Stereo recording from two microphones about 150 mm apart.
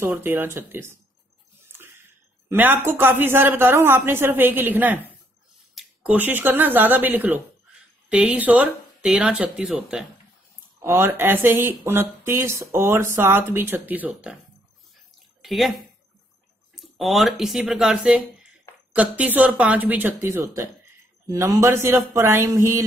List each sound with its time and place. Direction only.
0.0 s speech: 15° right (ahead or behind)
10.8 s speech: 15° right (ahead or behind)
15.4 s speech: centre (ahead or behind)
16.7 s speech: centre (ahead or behind); by 22.8 s 20° right (ahead or behind)